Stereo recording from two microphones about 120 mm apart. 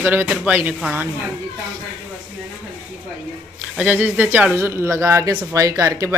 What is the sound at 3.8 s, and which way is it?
Speech, 10° right (ahead or behind).